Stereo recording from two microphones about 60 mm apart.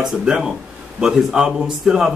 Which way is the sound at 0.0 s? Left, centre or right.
Centre.